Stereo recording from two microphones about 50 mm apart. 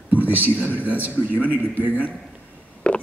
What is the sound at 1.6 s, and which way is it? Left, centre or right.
Speech, left.